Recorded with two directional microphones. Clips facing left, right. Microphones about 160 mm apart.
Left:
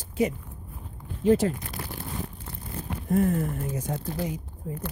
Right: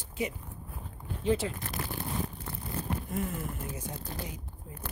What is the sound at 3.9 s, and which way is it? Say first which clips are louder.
Speech: left 10 dB; 75° left (ahead or behind).